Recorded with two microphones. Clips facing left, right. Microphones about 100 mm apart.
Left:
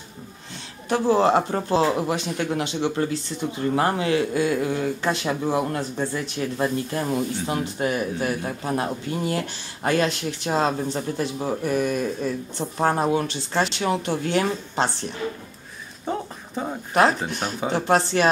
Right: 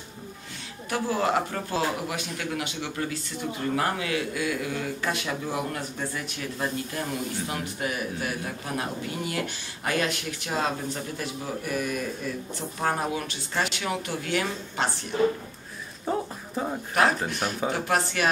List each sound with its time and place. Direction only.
0.8 s speech: 30° left (ahead or behind)
16.1 s a sound: centre (ahead or behind)
17.6 s speech: 30° left (ahead or behind)